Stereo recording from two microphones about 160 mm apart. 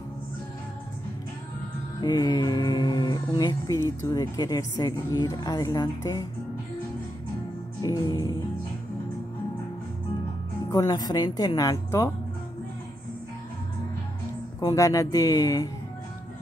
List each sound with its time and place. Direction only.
2.0 s speech: 25° left (ahead or behind)
7.8 s speech: 25° left (ahead or behind)
10.7 s speech: 25° left (ahead or behind)
14.6 s speech: 20° left (ahead or behind)